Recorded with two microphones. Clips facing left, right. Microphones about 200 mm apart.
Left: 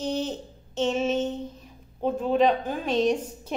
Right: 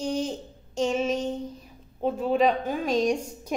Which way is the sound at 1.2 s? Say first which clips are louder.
Even; 35° right (ahead or behind).